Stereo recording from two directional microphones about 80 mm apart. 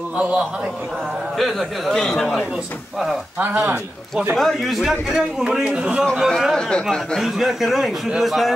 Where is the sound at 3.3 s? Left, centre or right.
Right.